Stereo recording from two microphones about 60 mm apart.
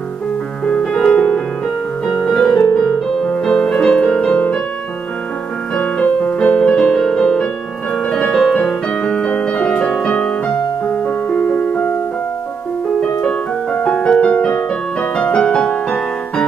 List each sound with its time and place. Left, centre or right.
0.7 s music: centre
2.2 s music: centre
5.8 s music: left
8.5 s piano: centre
11.3 s music: left
13.7 s music: centre